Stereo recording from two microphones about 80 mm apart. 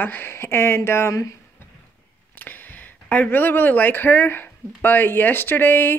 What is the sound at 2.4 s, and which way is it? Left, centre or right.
Speech, left.